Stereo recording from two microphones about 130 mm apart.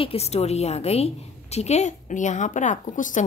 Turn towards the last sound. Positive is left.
turn(degrees=80)